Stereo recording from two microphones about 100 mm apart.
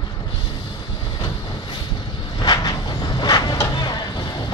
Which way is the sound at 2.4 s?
45° left (ahead or behind).